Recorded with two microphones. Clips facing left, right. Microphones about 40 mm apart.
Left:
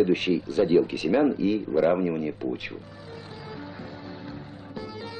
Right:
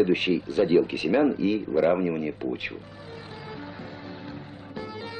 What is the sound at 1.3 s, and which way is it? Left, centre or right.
Speech, right.